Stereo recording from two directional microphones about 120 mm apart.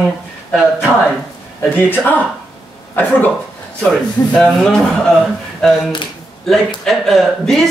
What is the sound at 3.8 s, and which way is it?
A man's voice, 10° left (ahead or behind).